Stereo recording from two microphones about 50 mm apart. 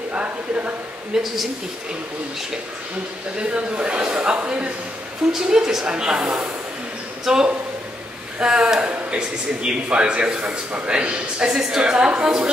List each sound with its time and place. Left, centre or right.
0.1 s a man's voice: right
1.1 s speech: centre
3.3 s a man's voice: right
5.3 s a woman's voice: centre